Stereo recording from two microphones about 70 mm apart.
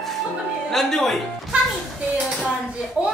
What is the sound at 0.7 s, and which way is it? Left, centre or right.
Speech, centre.